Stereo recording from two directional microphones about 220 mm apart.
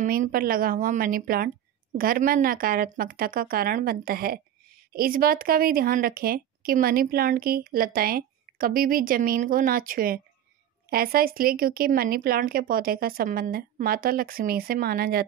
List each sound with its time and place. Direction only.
0.0 s a woman's voice: 40° right (ahead or behind)